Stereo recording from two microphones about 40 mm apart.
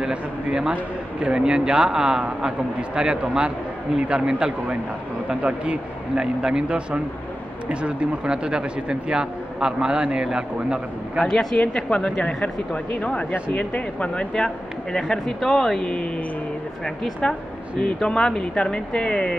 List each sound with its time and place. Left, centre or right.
0.0 s a man's voice: right
6.1 s a man's voice: right
9.9 s a man's voice: right
10.2 s a man's voice: centre
11.7 s speech: left
13.3 s speech: left
14.3 s speech: left
17.2 s speech: left